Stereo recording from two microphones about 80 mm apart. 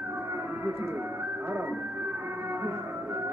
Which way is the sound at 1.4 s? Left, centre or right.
Right.